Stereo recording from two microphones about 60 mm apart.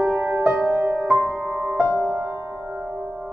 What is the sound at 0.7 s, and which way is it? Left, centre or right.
Music, right.